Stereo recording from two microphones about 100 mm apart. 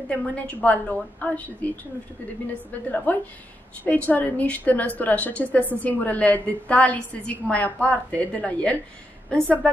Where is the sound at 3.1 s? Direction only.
15° left (ahead or behind).